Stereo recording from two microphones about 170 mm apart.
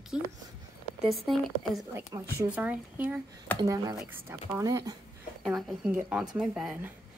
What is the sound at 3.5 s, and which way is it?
Speech, 20° right (ahead or behind).